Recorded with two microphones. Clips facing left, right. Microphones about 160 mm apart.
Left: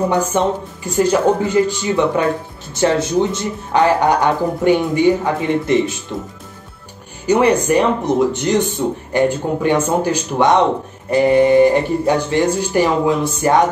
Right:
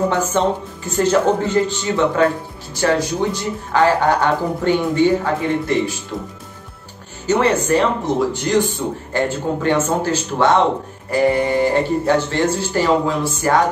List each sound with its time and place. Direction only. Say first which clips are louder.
0.3 s speech: left 1 dB; 10° left (ahead or behind)
7.2 s speech: left 3 dB; 15° left (ahead or behind)